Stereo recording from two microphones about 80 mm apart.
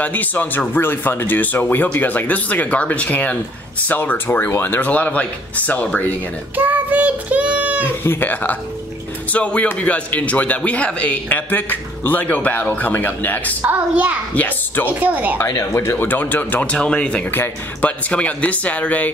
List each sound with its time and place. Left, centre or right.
0.0 s speech: left
6.5 s child singing: right
7.8 s speech: left
13.6 s a child's voice: right
14.3 s a child's voice: left
14.9 s a child's voice: centre
15.5 s speech: left
16.7 s speech: centre